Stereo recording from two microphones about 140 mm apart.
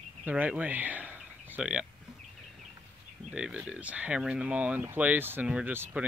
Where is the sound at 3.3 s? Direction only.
5° right (ahead or behind).